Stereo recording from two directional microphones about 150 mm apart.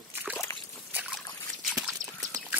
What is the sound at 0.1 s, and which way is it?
Trickle, 10° right (ahead or behind).